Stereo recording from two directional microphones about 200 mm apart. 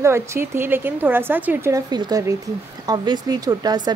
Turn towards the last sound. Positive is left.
turn(degrees=-20)  # may be behind; listen again after turning